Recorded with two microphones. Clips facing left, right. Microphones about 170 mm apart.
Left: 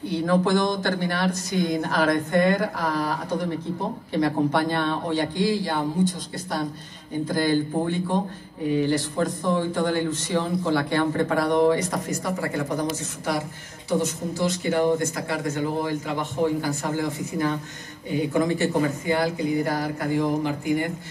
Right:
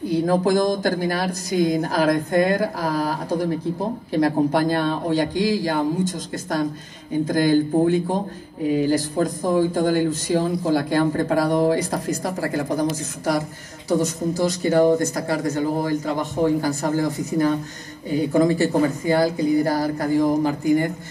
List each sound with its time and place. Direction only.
0.2 s speech: 40° right (ahead or behind)